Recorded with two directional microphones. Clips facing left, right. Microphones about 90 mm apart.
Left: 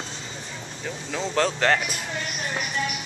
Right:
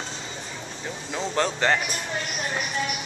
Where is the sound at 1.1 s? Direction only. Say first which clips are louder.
Left 1 dB; 5° right (ahead or behind).